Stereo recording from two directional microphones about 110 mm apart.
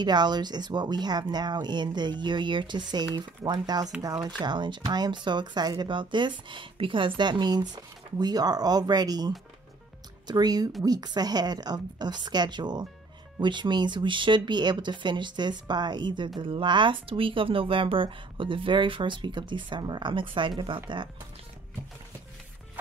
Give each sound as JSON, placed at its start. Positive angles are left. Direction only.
{"t": 0.0, "sound": "speech", "side_deg": -40}